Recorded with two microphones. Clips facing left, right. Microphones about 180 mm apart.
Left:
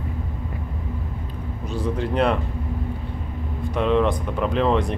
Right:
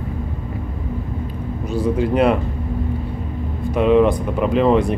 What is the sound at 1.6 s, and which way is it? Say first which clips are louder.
Speech: right 6 dB; 10° right (ahead or behind).